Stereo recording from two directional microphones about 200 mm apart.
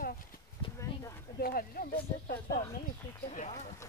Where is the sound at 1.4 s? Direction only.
45° left (ahead or behind).